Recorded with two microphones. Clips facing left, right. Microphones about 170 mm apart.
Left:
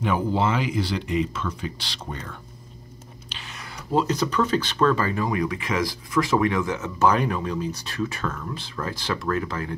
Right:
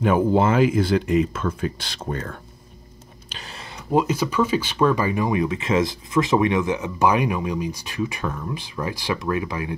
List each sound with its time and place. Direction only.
0.0 s speech: 50° right (ahead or behind)
3.9 s speech: 10° right (ahead or behind)